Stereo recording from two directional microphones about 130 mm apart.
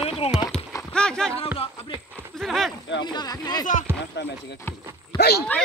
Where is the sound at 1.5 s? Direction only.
45° left (ahead or behind).